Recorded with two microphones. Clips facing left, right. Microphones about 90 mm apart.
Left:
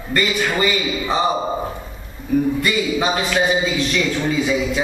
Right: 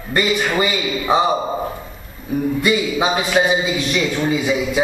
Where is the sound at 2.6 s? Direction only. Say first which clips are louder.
Right 2 dB; 15° right (ahead or behind).